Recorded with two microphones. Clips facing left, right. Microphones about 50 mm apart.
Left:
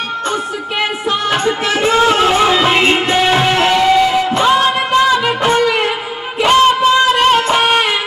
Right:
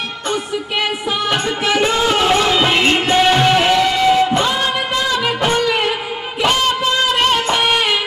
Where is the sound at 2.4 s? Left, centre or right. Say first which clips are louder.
Left 3 dB; centre.